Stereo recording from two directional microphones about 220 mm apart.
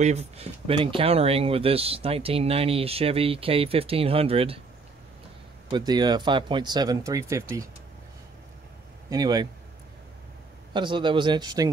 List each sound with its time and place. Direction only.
0.0 s speech: 30° right (ahead or behind)
5.7 s speech: 20° right (ahead or behind)
9.1 s speech: 20° right (ahead or behind)
10.7 s speech: 20° right (ahead or behind)